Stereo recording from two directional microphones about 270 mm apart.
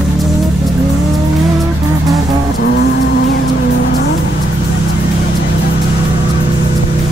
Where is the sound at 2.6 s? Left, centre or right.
Left.